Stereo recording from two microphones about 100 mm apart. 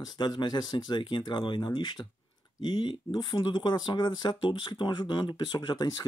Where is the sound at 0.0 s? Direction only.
45° left (ahead or behind).